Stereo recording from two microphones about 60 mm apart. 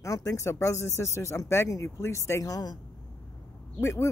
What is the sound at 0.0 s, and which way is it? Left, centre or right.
Speech, left.